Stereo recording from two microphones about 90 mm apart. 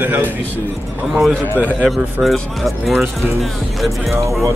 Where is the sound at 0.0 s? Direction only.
20° right (ahead or behind).